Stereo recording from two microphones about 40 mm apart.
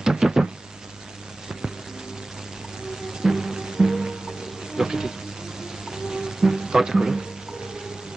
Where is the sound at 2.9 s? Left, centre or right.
Centre.